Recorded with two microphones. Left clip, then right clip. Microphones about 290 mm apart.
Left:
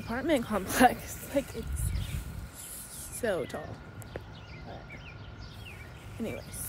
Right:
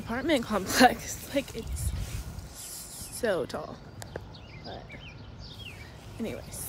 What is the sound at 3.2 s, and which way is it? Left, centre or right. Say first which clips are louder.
Speech: right 3 dB; centre.